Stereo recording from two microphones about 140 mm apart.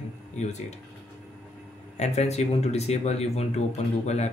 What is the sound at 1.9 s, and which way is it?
Speech, 55° left (ahead or behind).